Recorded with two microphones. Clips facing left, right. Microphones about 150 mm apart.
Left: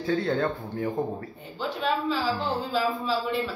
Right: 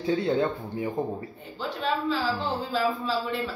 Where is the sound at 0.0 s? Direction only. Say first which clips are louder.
Right 1 dB; 15° right (ahead or behind).